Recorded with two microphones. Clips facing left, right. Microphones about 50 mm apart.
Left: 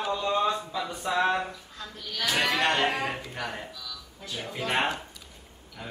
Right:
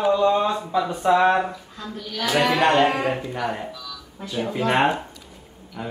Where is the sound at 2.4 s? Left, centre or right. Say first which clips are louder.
Right 8 dB; centre.